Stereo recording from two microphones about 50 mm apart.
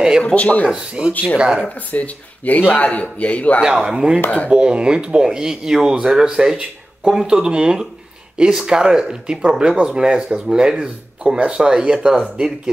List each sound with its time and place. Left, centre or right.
0.2 s a man's voice: left
0.7 s speech: centre
1.9 s a man's voice: left
3.6 s speech: centre